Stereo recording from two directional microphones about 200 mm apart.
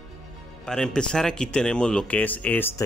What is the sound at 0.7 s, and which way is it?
Speech, 5° left (ahead or behind).